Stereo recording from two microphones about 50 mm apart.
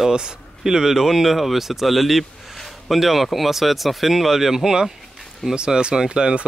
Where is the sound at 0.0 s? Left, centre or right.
Centre.